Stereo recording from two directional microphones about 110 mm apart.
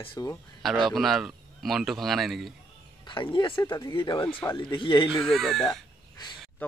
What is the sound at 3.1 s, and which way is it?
Speech, 50° left (ahead or behind).